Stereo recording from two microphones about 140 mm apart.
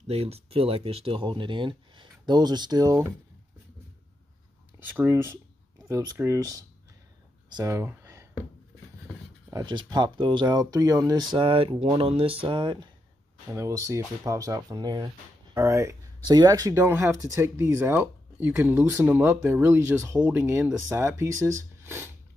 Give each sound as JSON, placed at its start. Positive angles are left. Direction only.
{"t": 0.0, "sound": "speech", "side_deg": -45}
{"t": 4.8, "sound": "speech", "side_deg": -15}
{"t": 9.5, "sound": "speech", "side_deg": -30}
{"t": 13.5, "sound": "speech", "side_deg": -20}
{"t": 15.5, "sound": "speech", "side_deg": -20}